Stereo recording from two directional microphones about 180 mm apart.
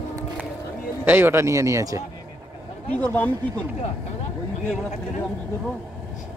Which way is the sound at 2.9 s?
10° left (ahead or behind).